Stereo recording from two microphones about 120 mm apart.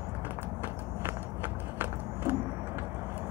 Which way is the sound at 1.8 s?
20° right (ahead or behind).